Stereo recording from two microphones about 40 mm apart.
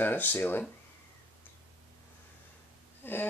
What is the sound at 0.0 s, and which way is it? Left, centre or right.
Speech, left.